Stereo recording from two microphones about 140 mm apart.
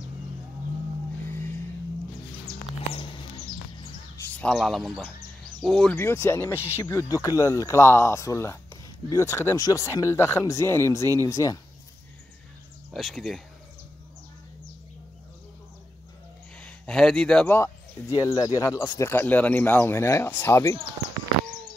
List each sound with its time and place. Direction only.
4.2 s speech: 10° left (ahead or behind)
5.9 s speech: 15° left (ahead or behind)
12.9 s speech: centre (ahead or behind)
16.5 s speech: 10° left (ahead or behind)
18.1 s speech: 25° left (ahead or behind)